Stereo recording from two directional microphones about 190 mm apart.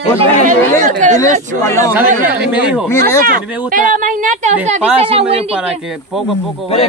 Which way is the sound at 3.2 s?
45° right (ahead or behind).